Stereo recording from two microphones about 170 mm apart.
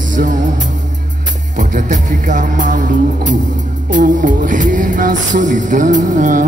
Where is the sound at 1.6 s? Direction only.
50° right (ahead or behind).